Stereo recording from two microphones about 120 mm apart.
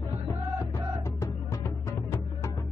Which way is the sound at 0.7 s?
25° left (ahead or behind).